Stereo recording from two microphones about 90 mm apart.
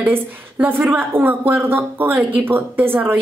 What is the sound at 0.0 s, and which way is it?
A woman's voice, 20° right (ahead or behind).